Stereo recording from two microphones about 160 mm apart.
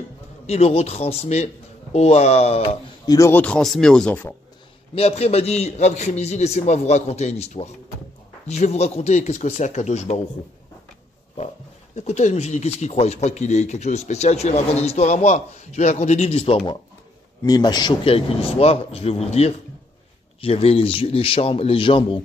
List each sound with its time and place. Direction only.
0.5 s speech: 40° left (ahead or behind)
3.1 s speech: 15° left (ahead or behind)
4.9 s speech: 40° left (ahead or behind)
11.9 s speech: 45° left (ahead or behind)
17.5 s speech: 25° left (ahead or behind)